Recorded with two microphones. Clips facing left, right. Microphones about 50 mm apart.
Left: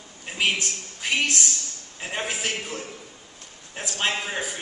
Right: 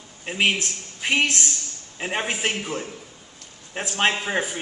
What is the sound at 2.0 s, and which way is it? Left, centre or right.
A woman's voice, right.